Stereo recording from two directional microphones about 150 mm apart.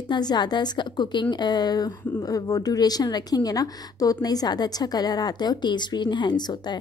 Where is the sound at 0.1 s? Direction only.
30° left (ahead or behind).